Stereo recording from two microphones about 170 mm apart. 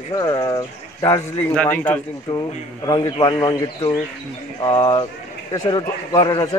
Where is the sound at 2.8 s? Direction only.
25° left (ahead or behind).